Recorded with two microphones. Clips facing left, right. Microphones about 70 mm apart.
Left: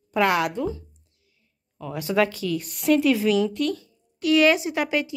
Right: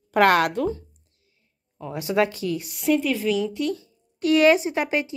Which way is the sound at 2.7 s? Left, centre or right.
Centre.